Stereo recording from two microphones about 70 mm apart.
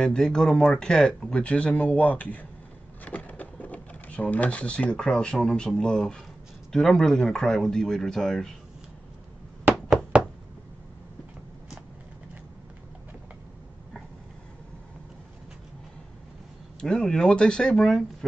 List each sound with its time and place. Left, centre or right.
0.0 s speech: centre
16.8 s speech: centre